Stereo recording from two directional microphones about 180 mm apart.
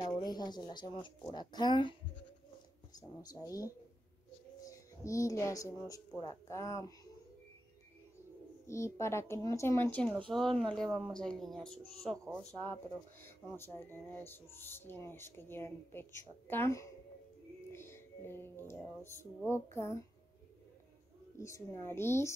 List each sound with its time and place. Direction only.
0.0 s a woman's voice: 25° left (ahead or behind)
8.6 s speech: 15° left (ahead or behind)
13.2 s speech: 10° left (ahead or behind)
21.4 s speech: 15° left (ahead or behind)